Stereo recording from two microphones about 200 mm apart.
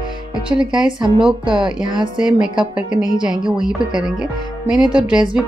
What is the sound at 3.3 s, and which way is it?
Speech, centre (ahead or behind).